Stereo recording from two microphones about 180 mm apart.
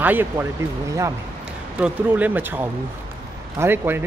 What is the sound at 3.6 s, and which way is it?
Speech, 10° right (ahead or behind).